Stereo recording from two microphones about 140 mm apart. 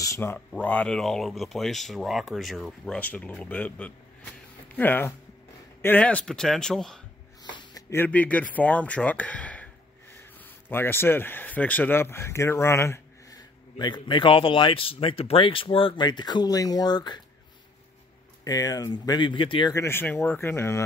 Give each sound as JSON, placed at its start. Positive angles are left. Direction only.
{"t": 0.0, "sound": "speech", "side_deg": 20}
{"t": 7.4, "sound": "gasp", "side_deg": 30}
{"t": 7.9, "sound": "speech", "side_deg": 15}
{"t": 18.4, "sound": "speech", "side_deg": 25}
{"t": 19.7, "sound": "speech", "side_deg": 20}